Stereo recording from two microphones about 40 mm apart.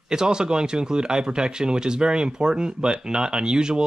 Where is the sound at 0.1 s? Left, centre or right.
Centre.